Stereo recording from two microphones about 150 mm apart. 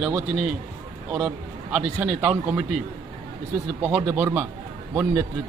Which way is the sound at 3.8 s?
15° right (ahead or behind).